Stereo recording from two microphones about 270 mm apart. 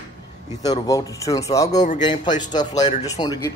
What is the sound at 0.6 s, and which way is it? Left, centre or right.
A man's voice, centre.